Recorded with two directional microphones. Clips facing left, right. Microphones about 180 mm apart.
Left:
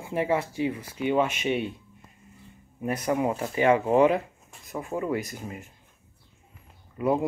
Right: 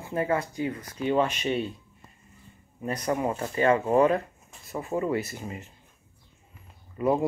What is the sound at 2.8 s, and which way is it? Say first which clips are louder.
Speech: left 2 dB; 5° left (ahead or behind).